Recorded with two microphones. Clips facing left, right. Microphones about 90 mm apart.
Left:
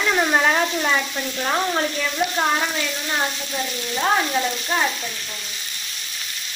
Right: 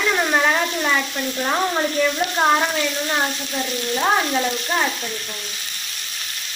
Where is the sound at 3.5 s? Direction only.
5° right (ahead or behind).